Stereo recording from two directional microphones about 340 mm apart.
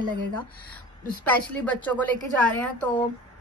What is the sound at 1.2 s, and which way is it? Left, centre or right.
Speech, centre.